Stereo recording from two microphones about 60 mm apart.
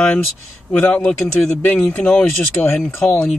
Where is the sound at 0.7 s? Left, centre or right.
Left.